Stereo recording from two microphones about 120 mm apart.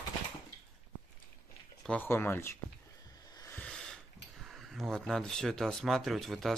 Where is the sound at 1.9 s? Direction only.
15° left (ahead or behind).